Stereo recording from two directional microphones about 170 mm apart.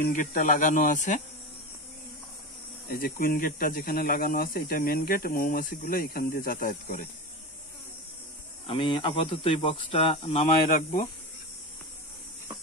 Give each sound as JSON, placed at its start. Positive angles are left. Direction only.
{"t": 0.0, "sound": "speech", "side_deg": 50}
{"t": 2.9, "sound": "speech", "side_deg": 60}
{"t": 8.6, "sound": "speech", "side_deg": 30}
{"t": 10.7, "sound": "speech", "side_deg": 50}